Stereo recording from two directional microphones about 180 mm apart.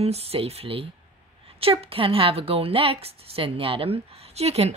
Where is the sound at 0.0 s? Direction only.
35° right (ahead or behind).